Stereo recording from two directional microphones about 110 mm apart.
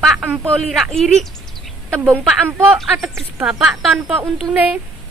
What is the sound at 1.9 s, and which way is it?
A woman's voice, 20° right (ahead or behind).